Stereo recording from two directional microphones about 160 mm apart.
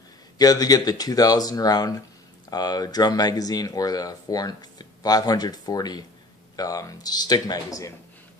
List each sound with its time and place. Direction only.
0.4 s speech: 25° left (ahead or behind)